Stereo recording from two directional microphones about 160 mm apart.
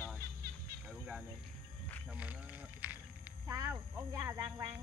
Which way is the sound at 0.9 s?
5° right (ahead or behind).